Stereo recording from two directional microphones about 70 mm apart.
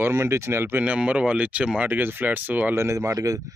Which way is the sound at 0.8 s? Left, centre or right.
Centre.